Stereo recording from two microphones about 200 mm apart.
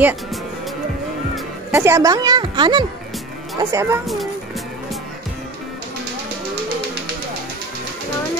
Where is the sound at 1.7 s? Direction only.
15° right (ahead or behind).